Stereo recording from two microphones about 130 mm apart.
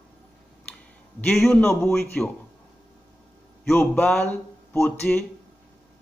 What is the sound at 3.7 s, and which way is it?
A man's voice, 15° left (ahead or behind).